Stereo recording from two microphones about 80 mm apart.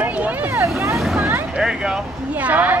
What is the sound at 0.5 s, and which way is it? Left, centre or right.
Speech, right.